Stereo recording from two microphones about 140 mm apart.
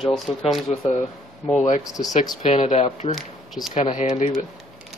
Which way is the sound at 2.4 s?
50° left (ahead or behind).